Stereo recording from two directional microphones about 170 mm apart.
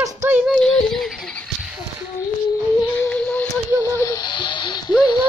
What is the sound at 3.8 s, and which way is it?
Music, 15° left (ahead or behind).